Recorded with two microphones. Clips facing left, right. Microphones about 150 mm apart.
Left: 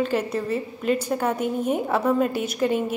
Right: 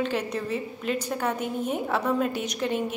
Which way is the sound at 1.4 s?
50° left (ahead or behind).